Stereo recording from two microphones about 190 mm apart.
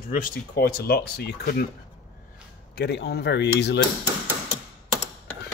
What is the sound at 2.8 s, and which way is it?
Speech, 60° left (ahead or behind).